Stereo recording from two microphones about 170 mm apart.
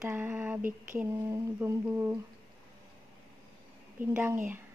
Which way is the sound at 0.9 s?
15° right (ahead or behind).